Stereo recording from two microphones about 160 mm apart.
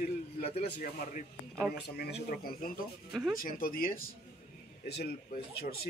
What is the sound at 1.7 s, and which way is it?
Speech, 80° left.